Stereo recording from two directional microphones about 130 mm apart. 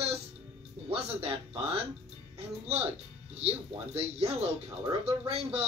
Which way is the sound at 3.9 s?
50° right (ahead or behind).